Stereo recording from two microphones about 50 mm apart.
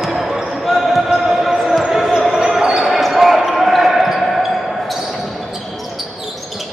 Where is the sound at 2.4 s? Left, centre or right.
Centre.